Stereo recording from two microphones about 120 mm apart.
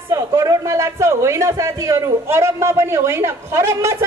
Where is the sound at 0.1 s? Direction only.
30° right (ahead or behind).